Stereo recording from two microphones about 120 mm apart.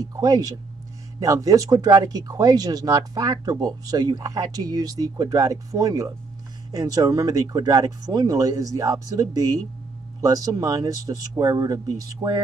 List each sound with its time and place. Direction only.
0.0 s speech: 30° right (ahead or behind)